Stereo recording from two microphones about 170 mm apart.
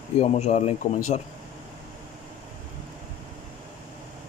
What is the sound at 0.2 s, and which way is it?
A man's voice, 40° left (ahead or behind).